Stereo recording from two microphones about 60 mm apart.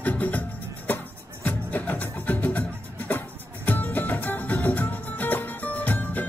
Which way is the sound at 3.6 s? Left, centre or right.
Left.